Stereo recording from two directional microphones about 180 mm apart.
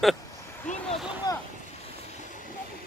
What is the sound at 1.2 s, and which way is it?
Vehicle, 20° left (ahead or behind).